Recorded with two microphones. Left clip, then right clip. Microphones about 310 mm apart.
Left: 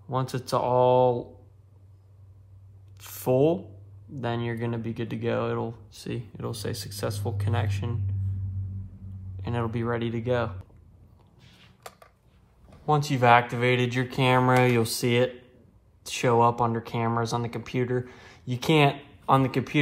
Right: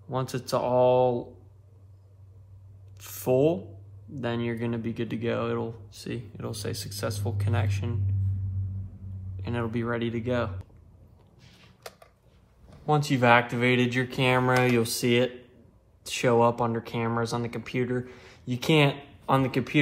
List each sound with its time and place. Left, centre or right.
0.1 s speech: left
3.0 s speech: left
9.4 s speech: left
11.3 s a sound: centre
12.6 s speech: left